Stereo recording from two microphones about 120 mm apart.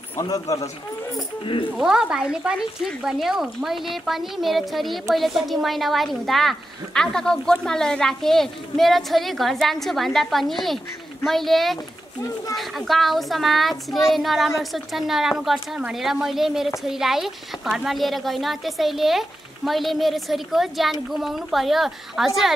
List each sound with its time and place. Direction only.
0.2 s a man's voice: 30° left (ahead or behind)
1.4 s speech: 45° left (ahead or behind)
1.8 s speech: 5° right (ahead or behind)